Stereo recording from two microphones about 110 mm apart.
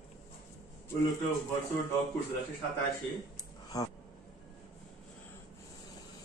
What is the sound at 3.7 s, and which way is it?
Speech, 35° left (ahead or behind).